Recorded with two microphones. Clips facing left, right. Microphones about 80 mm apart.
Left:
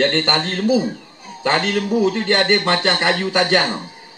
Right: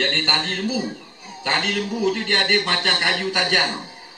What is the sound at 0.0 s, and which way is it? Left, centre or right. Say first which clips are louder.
A man's voice: left 5 dB; left.